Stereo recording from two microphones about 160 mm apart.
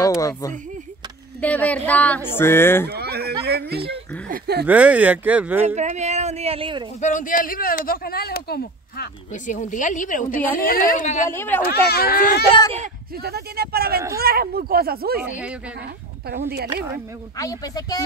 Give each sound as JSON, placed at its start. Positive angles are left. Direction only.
{"t": 0.0, "sound": "a sound", "side_deg": 20}
{"t": 1.4, "sound": "a woman's voice", "side_deg": 10}
{"t": 2.9, "sound": "speech", "side_deg": -85}
{"t": 4.6, "sound": "speech", "side_deg": -10}
{"t": 5.8, "sound": "speech", "side_deg": -45}
{"t": 7.0, "sound": "speech", "side_deg": 50}
{"t": 9.3, "sound": "speech", "side_deg": 55}
{"t": 11.2, "sound": "a woman's voice", "side_deg": 15}
{"t": 11.6, "sound": "speech", "side_deg": 75}
{"t": 13.1, "sound": "speech", "side_deg": -80}
{"t": 17.4, "sound": "speech", "side_deg": 20}